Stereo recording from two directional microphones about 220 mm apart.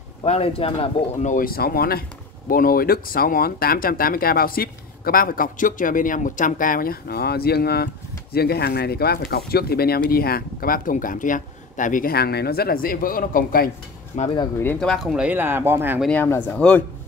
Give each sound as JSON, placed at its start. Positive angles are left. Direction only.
{"t": 0.2, "sound": "speech", "side_deg": 25}
{"t": 14.1, "sound": "speech", "side_deg": 25}
{"t": 14.6, "sound": "speech", "side_deg": 5}
{"t": 16.1, "sound": "speech", "side_deg": 10}